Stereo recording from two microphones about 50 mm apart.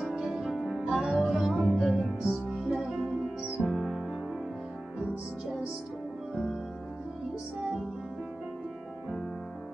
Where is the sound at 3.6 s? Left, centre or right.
Centre.